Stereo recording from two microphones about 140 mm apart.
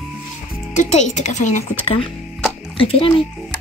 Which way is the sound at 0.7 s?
60° left (ahead or behind).